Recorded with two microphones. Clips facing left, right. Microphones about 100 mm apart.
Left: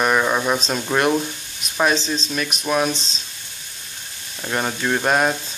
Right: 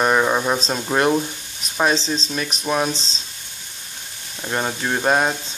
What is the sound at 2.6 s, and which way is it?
Speech, 20° right (ahead or behind).